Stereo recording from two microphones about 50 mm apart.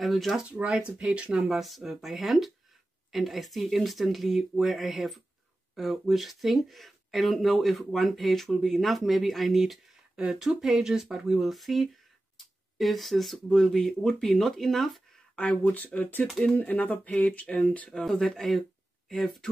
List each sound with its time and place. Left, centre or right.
0.0 s speech: centre
0.4 s speech: right
1.3 s speech: centre
10.1 s speech: centre
15.3 s speech: left
17.9 s speech: centre
18.4 s speech: centre